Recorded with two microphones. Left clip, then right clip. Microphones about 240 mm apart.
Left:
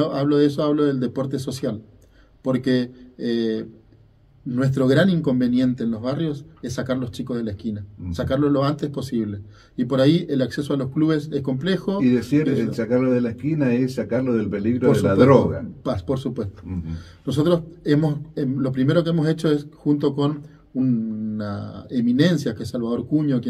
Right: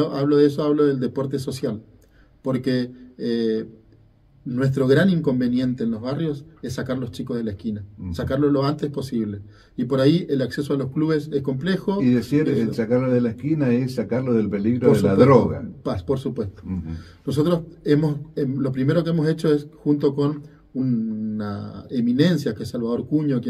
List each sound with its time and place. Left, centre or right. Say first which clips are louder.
0.0 s speech: right 1 dB; centre
12.0 s a man's voice: left 1 dB; right
15.8 s speech: right 1 dB; centre